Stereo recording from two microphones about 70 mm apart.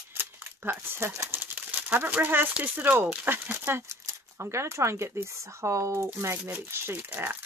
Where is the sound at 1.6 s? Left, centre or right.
Right.